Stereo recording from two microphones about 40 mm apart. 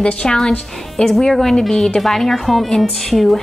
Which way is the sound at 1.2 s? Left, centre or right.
Centre.